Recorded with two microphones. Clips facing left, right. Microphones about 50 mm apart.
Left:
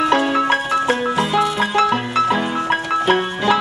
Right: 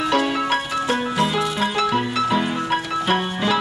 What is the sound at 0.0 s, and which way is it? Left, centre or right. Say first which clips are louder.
Music: left 4 dB; left.